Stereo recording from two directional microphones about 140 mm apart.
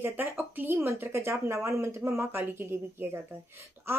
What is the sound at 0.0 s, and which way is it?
Speech, 15° right (ahead or behind).